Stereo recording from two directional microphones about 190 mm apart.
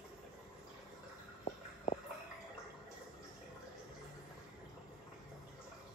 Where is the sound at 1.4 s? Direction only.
30° left (ahead or behind).